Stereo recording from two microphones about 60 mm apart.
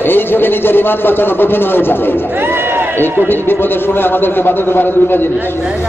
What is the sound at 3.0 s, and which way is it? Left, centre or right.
A man's voice, left.